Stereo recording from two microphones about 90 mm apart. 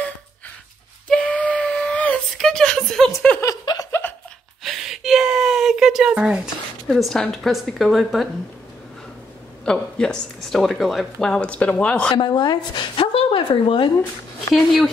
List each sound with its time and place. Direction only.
1.0 s a sound: 10° left (ahead or behind)
3.7 s laughter: 55° left (ahead or behind)
4.6 s a sound: centre (ahead or behind)
6.9 s a woman's voice: 5° left (ahead or behind)
9.7 s speech: 10° left (ahead or behind)
12.1 s a woman's voice: 55° left (ahead or behind); by 13.9 s 80° left
14.5 s a woman's voice: centre (ahead or behind)